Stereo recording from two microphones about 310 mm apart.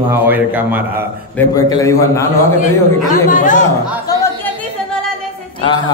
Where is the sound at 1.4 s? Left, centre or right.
Centre.